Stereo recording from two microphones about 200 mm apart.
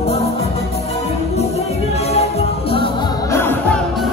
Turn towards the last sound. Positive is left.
turn(degrees=10)  # may be behind; listen again after turning